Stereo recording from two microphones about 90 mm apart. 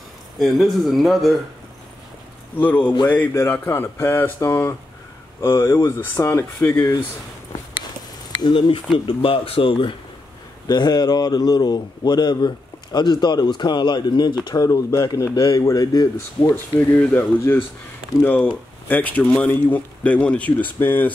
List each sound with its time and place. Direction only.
0.4 s speech: centre (ahead or behind)
2.6 s speech: 20° left (ahead or behind)
8.3 s speech: 75° left (ahead or behind)
10.7 s a man's voice: 50° left (ahead or behind)
14.5 s a man's voice: 40° left (ahead or behind)
16.4 s a man's voice: 20° left (ahead or behind)